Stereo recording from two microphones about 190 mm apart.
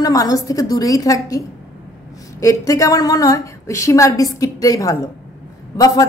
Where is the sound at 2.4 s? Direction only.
15° left (ahead or behind).